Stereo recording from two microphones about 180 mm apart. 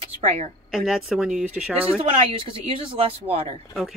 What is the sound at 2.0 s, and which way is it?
Speech, 35° right (ahead or behind).